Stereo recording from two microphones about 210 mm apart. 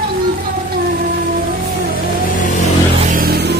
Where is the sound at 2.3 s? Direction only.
40° left (ahead or behind).